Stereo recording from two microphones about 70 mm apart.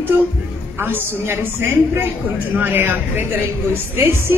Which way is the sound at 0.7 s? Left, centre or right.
Right.